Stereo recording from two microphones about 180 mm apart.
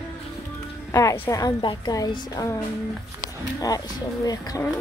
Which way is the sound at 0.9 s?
15° left (ahead or behind).